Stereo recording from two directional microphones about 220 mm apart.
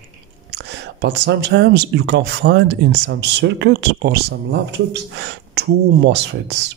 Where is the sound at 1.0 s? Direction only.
50° right (ahead or behind).